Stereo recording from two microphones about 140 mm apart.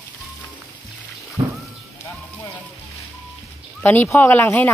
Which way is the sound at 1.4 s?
20° right (ahead or behind).